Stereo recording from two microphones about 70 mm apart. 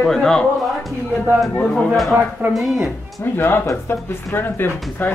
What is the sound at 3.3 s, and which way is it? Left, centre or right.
Speech, left.